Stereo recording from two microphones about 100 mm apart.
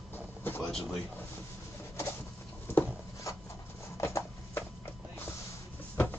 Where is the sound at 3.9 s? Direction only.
30° left (ahead or behind).